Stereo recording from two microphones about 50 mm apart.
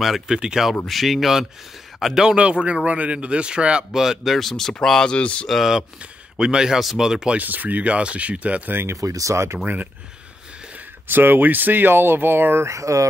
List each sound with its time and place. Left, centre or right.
0.0 s speech: centre
0.4 s speech: centre
0.8 s speech: centre
2.2 s a man's voice: centre
3.9 s speech: centre
5.1 s speech: left
5.5 s speech: centre
6.3 s speech: centre
7.3 s a man's voice: right
8.9 s speech: right
11.1 s speech: right
12.6 s speech: right